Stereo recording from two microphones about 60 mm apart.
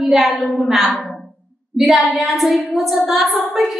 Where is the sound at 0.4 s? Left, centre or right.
Centre.